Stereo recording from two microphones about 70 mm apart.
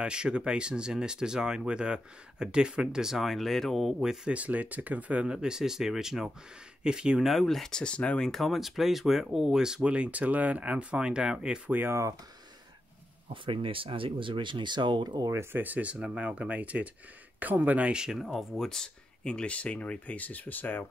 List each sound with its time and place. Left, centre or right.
0.0 s speech: centre
4.3 s speech: right; by 8.3 s centre
8.3 s speech: centre
11.9 s speech: right
14.6 s speech: right
15.6 s speech: right; by 20.8 s left